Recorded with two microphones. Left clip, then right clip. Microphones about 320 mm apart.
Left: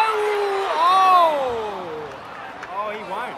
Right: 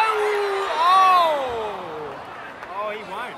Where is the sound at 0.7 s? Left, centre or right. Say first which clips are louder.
Even; centre.